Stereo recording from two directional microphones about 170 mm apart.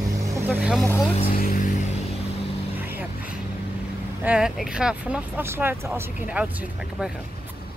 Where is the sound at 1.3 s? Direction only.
60° left (ahead or behind).